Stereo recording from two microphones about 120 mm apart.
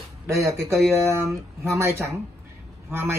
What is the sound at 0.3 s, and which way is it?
Speech, 25° right (ahead or behind).